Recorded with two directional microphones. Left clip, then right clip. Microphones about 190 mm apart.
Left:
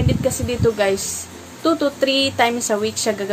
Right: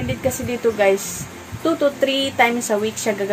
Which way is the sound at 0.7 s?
10° left (ahead or behind).